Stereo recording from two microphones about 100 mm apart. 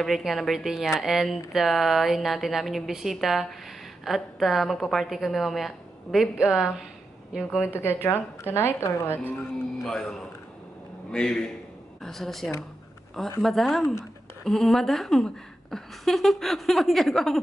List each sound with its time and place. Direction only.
0.0 s a woman's voice: centre (ahead or behind)
7.8 s a woman's voice: 25° left (ahead or behind)
9.4 s a woman's voice: 5° left (ahead or behind)